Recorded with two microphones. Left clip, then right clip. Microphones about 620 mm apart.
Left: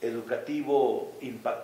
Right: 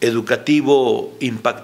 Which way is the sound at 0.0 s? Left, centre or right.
Right.